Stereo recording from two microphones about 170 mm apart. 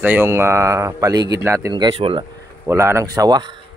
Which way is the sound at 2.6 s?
15° right (ahead or behind).